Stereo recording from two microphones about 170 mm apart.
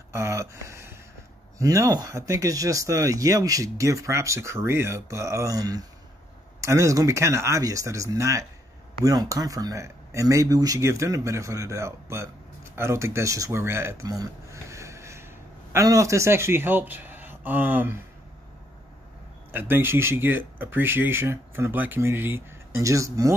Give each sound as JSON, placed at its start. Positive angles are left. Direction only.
{"t": 0.1, "sound": "a sound", "side_deg": -15}
{"t": 1.6, "sound": "speech", "side_deg": -20}
{"t": 19.5, "sound": "speech", "side_deg": -10}